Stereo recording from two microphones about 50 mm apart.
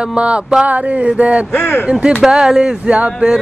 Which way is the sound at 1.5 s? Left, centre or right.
Left.